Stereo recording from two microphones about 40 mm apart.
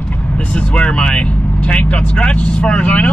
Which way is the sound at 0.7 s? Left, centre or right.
Left.